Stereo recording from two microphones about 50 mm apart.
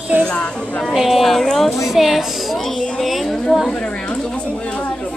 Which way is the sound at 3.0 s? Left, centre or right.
Centre.